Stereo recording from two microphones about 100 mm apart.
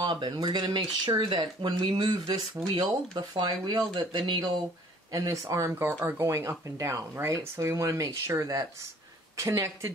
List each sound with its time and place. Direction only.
0.0 s speech: 50° right (ahead or behind)
2.0 s speech: 40° right (ahead or behind)